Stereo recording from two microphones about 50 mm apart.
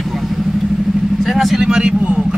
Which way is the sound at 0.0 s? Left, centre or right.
Centre.